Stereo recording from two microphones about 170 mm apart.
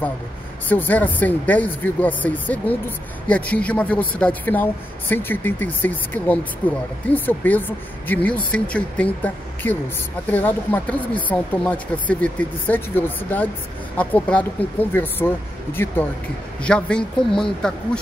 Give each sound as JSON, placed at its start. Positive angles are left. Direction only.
{"t": 0.7, "sound": "speech", "side_deg": 10}